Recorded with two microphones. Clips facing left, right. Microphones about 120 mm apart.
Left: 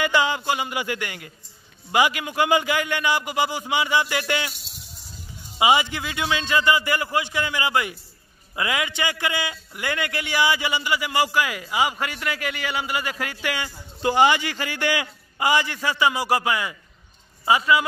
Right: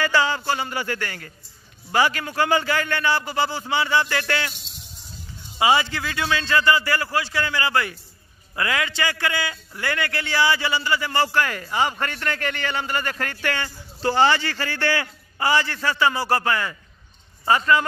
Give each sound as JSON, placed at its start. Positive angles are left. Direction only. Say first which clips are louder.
{"t": 0.0, "sound": "a man's voice", "louder": "even", "side_deg": 15}
{"t": 5.6, "sound": "a man's voice", "louder": "even", "side_deg": 15}